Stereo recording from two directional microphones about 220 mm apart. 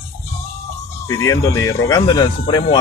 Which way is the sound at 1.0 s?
15° left (ahead or behind).